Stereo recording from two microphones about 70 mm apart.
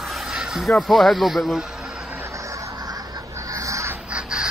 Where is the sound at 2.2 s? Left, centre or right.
Right.